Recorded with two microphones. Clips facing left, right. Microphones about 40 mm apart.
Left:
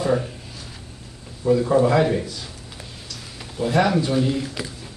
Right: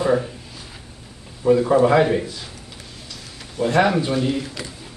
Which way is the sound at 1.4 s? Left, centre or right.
Centre.